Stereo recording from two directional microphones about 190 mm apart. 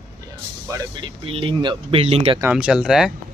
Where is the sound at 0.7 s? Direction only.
20° right (ahead or behind).